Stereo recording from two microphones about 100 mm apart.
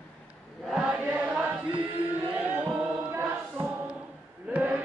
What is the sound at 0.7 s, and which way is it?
Chant, 10° right (ahead or behind).